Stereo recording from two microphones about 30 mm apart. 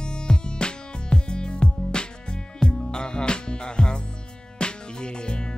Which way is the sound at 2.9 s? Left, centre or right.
Left.